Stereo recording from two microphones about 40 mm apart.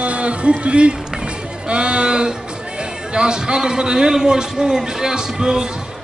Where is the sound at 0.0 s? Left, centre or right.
Right.